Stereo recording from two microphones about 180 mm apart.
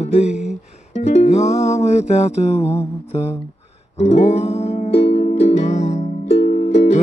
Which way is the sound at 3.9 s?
40° left (ahead or behind).